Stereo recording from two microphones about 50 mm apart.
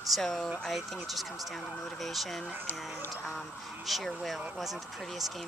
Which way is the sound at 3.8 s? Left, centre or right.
Centre.